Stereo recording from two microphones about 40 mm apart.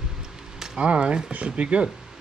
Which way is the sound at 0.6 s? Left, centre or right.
Right.